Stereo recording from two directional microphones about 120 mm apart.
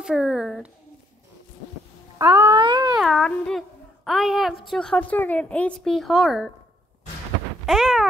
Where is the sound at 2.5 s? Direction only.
40° right (ahead or behind).